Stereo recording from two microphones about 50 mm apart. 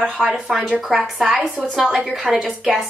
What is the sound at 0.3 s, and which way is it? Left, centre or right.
Speech, centre.